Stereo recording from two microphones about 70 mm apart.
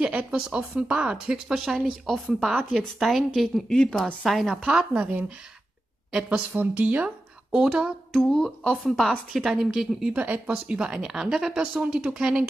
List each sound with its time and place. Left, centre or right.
0.0 s speech: centre
2.5 s a woman's voice: centre
4.6 s speech: centre
6.1 s a woman's voice: centre
7.5 s speech: centre
8.1 s a woman's voice: centre
10.1 s speech: centre